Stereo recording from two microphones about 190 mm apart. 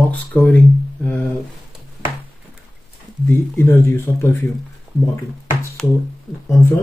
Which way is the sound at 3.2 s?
15° left (ahead or behind).